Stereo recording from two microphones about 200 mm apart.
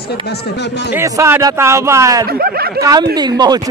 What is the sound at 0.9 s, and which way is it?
Speech, 15° right (ahead or behind).